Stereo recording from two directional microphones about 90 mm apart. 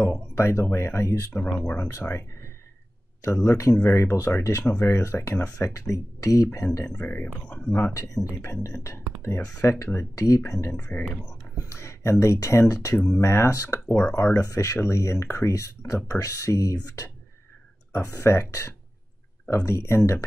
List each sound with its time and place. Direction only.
0.3 s speech: 30° left (ahead or behind)
6.8 s speech: 15° left (ahead or behind)
8.5 s speech: 35° left (ahead or behind)
10.7 s speech: 20° left (ahead or behind)
11.5 s speech: 30° left (ahead or behind)
18.2 s speech: 30° left (ahead or behind)